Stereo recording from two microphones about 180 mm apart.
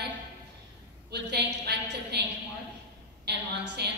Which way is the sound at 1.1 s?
65° right (ahead or behind).